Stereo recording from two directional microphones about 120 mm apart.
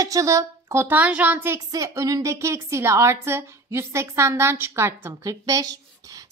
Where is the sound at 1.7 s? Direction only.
30° right (ahead or behind).